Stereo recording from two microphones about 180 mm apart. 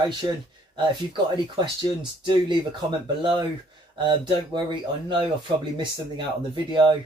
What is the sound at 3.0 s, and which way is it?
Speech, 25° right (ahead or behind).